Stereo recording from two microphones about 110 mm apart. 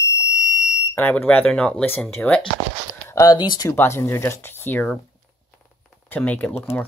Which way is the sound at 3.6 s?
25° left (ahead or behind).